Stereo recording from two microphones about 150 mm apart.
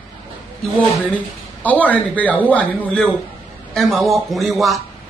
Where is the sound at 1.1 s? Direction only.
10° left (ahead or behind).